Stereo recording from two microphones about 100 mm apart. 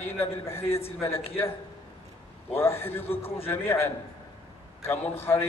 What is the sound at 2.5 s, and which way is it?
Speech, 25° left (ahead or behind).